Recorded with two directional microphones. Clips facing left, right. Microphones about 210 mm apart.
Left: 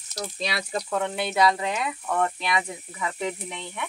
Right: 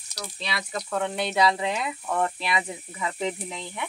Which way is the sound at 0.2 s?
45° left (ahead or behind).